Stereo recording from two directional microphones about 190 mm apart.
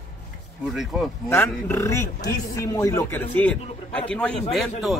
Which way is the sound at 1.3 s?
10° left (ahead or behind).